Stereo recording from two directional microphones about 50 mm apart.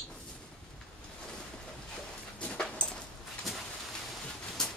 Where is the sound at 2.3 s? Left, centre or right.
Left.